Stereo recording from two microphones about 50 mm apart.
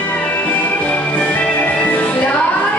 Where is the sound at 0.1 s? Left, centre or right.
Left.